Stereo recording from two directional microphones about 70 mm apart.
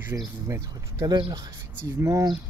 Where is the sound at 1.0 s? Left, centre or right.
Right.